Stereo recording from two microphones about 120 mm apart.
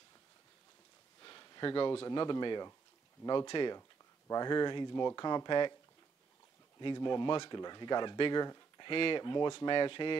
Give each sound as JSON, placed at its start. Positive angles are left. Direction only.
{"t": 1.2, "sound": "a sound", "side_deg": 35}
{"t": 2.0, "sound": "speech", "side_deg": 35}
{"t": 6.8, "sound": "speech", "side_deg": 40}